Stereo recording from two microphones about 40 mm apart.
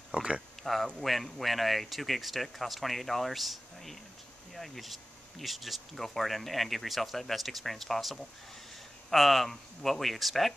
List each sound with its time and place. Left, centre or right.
0.1 s speech: right
0.7 s speech: centre